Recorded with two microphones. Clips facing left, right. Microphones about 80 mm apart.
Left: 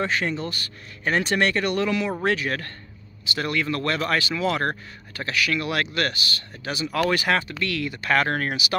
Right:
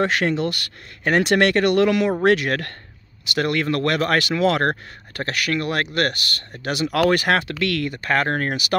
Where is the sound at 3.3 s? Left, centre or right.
Right.